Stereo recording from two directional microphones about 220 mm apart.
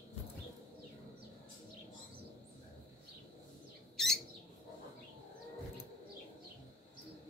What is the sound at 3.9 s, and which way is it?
Bird, centre (ahead or behind).